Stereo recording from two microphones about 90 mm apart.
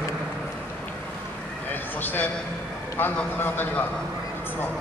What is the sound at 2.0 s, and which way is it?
A man's voice, 20° left (ahead or behind).